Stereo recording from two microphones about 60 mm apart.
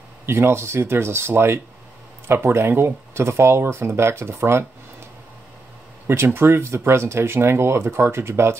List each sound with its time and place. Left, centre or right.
0.3 s speech: right
6.0 s speech: right